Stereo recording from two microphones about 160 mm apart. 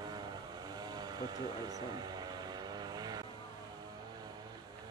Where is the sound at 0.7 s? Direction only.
25° right (ahead or behind).